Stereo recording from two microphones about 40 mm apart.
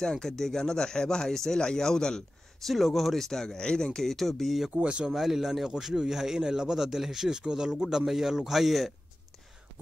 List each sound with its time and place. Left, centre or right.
0.0 s speech: centre
2.6 s speech: centre
4.7 s speech: right
5.1 s speech: centre